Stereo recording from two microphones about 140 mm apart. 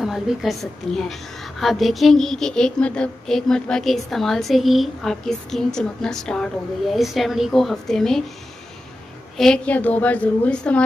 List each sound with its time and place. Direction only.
0.0 s a woman's voice: centre (ahead or behind)
9.4 s a woman's voice: 5° left (ahead or behind)